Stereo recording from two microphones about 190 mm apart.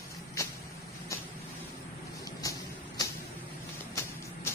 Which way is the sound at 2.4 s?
20° left (ahead or behind).